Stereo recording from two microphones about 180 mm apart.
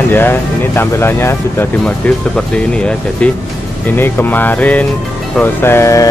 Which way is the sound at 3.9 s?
10° left (ahead or behind).